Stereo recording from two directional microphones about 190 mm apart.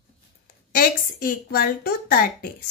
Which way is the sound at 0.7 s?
50° left (ahead or behind).